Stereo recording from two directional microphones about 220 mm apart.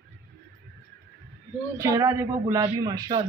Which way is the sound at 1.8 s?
15° right (ahead or behind).